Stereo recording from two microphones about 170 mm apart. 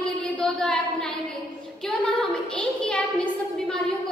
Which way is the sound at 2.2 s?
5° left (ahead or behind).